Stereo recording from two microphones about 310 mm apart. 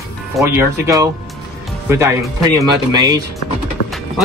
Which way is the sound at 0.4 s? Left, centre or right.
Centre.